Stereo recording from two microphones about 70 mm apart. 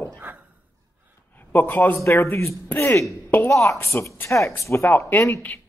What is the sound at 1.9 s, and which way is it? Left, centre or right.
Speech, left.